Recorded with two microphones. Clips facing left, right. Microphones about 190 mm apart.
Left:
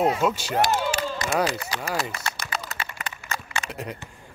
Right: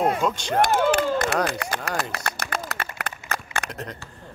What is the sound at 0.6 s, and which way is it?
Speech, 55° right (ahead or behind).